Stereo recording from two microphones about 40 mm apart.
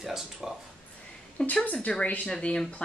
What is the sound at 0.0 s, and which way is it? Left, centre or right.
Speech, centre.